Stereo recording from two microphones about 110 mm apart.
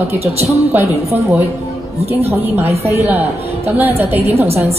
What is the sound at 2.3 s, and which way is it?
Speech, 25° right (ahead or behind).